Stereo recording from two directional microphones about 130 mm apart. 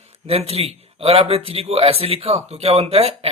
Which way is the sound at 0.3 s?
50° right (ahead or behind).